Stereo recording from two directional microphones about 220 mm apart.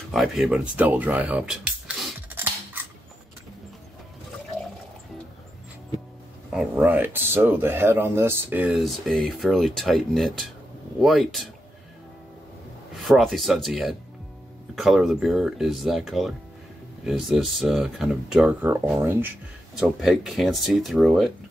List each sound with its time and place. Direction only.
0.1 s a sound: centre (ahead or behind)
6.5 s speech: 5° right (ahead or behind)
12.9 s speech: centre (ahead or behind)